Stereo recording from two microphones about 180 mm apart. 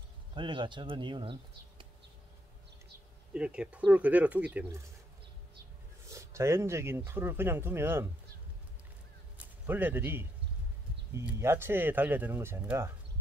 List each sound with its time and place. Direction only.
0.3 s speech: 25° right (ahead or behind)
3.3 s speech: 5° right (ahead or behind)
6.0 s speech: 15° right (ahead or behind)
9.4 s speech: 10° right (ahead or behind)